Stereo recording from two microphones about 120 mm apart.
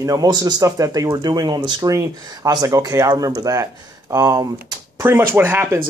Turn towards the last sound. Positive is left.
turn(degrees=-20)  # may be behind; listen again after turning